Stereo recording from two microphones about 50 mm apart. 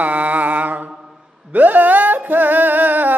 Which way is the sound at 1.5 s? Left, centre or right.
Right.